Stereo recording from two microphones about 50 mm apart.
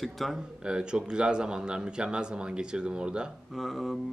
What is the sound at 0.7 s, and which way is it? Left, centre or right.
Speech, centre.